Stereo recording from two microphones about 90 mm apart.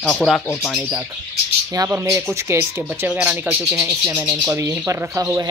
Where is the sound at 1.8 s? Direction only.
40° right (ahead or behind).